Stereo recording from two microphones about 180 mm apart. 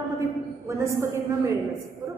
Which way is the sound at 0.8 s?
15° right (ahead or behind).